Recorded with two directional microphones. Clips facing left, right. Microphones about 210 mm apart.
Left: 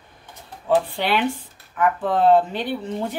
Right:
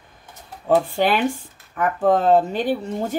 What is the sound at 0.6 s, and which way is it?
A woman's voice, 45° right (ahead or behind).